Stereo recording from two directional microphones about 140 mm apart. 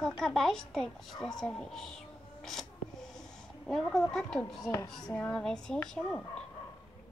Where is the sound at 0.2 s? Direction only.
Centre (ahead or behind).